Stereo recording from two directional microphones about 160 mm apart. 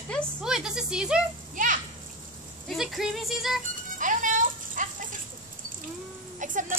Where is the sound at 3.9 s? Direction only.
55° right (ahead or behind).